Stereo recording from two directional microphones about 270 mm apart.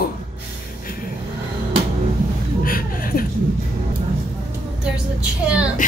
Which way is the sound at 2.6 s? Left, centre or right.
Left.